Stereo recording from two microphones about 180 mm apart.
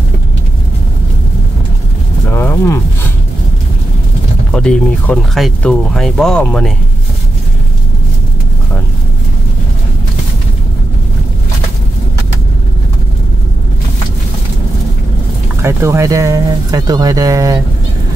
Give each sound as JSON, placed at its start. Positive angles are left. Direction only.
{"t": 2.3, "sound": "a sound", "side_deg": 15}
{"t": 4.5, "sound": "speech", "side_deg": 5}
{"t": 15.6, "sound": "speech", "side_deg": -15}